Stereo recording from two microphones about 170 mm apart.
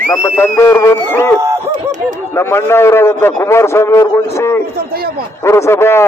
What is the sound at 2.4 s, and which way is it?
A man's voice, 15° left (ahead or behind).